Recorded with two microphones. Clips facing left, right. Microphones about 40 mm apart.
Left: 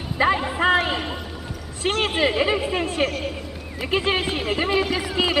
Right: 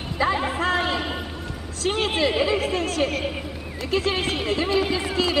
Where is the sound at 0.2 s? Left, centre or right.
Left.